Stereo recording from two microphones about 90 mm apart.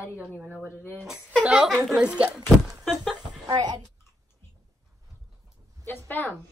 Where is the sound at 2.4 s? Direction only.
Centre (ahead or behind).